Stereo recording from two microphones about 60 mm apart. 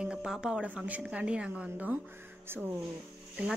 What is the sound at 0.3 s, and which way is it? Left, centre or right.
Speech, centre.